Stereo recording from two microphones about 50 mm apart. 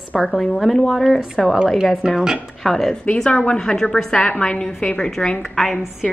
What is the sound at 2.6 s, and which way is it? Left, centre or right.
A woman's voice, centre.